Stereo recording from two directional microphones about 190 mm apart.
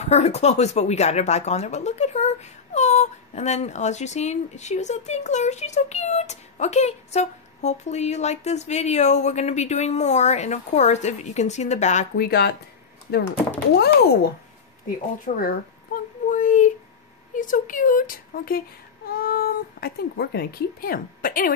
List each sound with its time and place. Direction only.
0.0 s speech: 35° left (ahead or behind)
12.3 s speech: 60° left (ahead or behind)
15.2 s a sound: 50° left (ahead or behind)
17.4 s speech: 45° left (ahead or behind)